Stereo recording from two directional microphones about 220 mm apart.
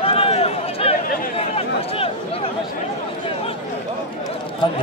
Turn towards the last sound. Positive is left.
turn(degrees=20)  # may be behind; listen again after turning